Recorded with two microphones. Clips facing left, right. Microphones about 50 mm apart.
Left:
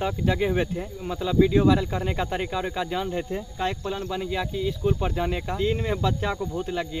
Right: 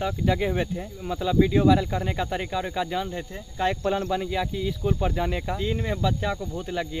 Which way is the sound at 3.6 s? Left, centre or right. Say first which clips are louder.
Right 5 dB; centre.